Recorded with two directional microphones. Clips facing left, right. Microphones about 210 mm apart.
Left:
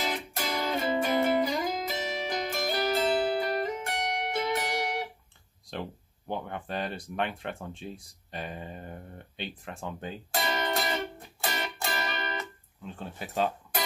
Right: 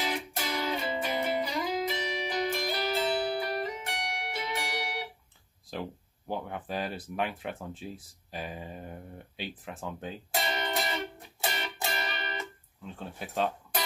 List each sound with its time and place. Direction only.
0.0 s music: 45° left (ahead or behind)
5.7 s speech: 5° right (ahead or behind)
10.4 s music: 45° left (ahead or behind)
12.8 s speech: centre (ahead or behind)